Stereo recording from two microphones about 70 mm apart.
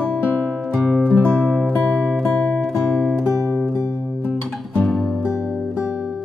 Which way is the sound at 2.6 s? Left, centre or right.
Centre.